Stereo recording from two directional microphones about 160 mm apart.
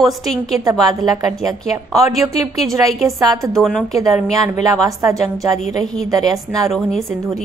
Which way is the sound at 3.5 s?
Centre (ahead or behind).